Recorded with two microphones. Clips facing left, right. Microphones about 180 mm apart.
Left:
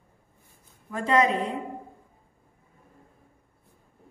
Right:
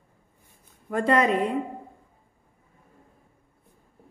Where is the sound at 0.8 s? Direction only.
60° right (ahead or behind).